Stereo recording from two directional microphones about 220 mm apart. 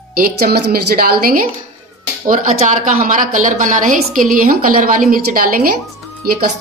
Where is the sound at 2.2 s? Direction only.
35° right (ahead or behind).